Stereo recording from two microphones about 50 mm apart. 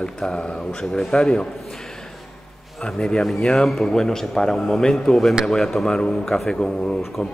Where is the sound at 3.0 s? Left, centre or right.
Centre.